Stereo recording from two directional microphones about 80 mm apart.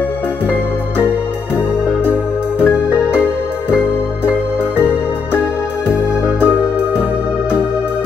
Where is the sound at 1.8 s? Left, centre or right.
Left.